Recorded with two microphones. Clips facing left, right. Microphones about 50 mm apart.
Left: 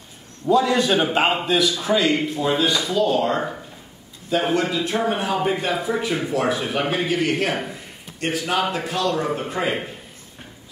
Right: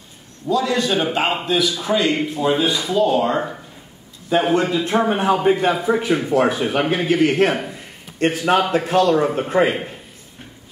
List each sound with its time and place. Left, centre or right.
0.5 s a man's voice: left
0.8 s a man's voice: centre
4.3 s a man's voice: right
7.1 s a man's voice: right
7.5 s a man's voice: centre
8.2 s a man's voice: right
9.1 s speech: right